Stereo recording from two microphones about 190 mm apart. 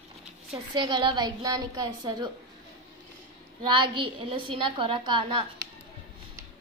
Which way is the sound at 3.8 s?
25° right (ahead or behind).